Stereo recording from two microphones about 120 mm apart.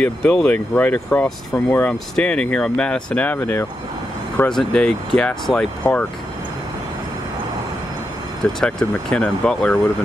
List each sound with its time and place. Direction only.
0.0 s speech: 5° left (ahead or behind)
3.3 s speech: 20° left (ahead or behind)
4.4 s speech: 5° left (ahead or behind)
8.4 s speech: 5° left (ahead or behind)